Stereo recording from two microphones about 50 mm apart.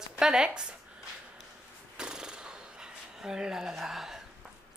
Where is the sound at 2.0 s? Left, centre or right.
Centre.